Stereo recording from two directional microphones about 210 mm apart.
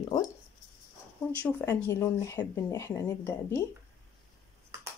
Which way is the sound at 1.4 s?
10° left (ahead or behind).